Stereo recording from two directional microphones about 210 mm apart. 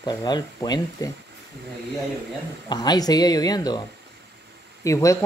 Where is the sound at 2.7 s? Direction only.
20° left (ahead or behind).